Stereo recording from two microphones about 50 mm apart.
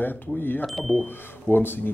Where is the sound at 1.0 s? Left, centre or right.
Left.